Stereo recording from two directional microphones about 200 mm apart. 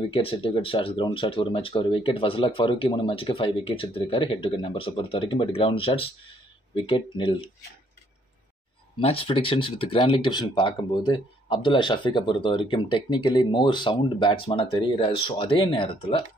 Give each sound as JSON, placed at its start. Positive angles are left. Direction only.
{"t": 0.1, "sound": "speech", "side_deg": 25}
{"t": 9.0, "sound": "speech", "side_deg": 25}